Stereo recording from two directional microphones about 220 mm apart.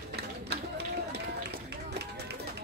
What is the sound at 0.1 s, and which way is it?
Run, 50° right (ahead or behind).